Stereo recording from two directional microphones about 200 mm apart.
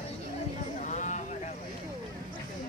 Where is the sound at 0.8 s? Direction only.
35° left (ahead or behind).